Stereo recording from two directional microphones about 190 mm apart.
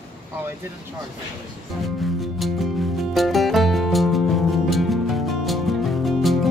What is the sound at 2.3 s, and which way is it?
Music, centre (ahead or behind).